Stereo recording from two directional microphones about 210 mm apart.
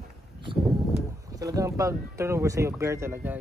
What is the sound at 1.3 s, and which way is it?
Speech, 15° right (ahead or behind).